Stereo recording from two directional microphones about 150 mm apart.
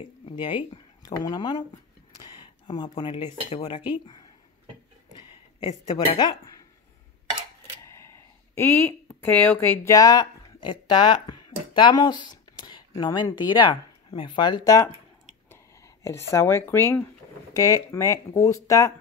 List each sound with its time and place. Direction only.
0.2 s speech: 35° left (ahead or behind)
2.2 s a sound: 30° left (ahead or behind)
3.6 s cutlery: 30° left (ahead or behind)
5.9 s speech: 30° left (ahead or behind)
7.8 s speech: 20° left (ahead or behind)
15.5 s a sound: 20° left (ahead or behind)
17.6 s speech: 25° left (ahead or behind)